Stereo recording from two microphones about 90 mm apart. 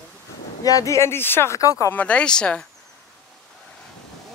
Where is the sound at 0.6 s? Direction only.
40° left (ahead or behind).